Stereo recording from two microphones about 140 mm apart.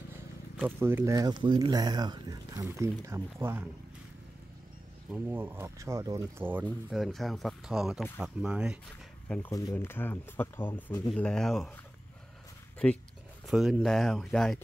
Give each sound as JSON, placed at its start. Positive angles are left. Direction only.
{"t": 0.7, "sound": "speech", "side_deg": -15}
{"t": 5.1, "sound": "speech", "side_deg": -15}
{"t": 6.9, "sound": "speech", "side_deg": 0}
{"t": 9.5, "sound": "speech", "side_deg": 25}
{"t": 12.7, "sound": "speech", "side_deg": 10}
{"t": 13.5, "sound": "speech", "side_deg": -5}